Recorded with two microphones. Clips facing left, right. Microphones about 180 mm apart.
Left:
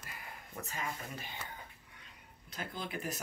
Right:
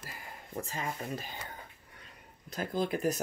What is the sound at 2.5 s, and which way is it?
Speech, 45° right (ahead or behind).